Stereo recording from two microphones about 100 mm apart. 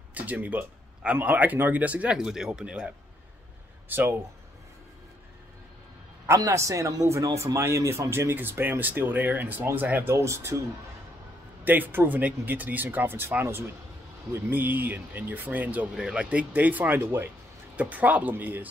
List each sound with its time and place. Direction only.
0.1 s speech: 15° right (ahead or behind)
3.9 s speech: 20° right (ahead or behind)
6.2 s speech: 30° right (ahead or behind)
10.1 s speech: 30° right (ahead or behind)
11.6 s speech: 20° right (ahead or behind)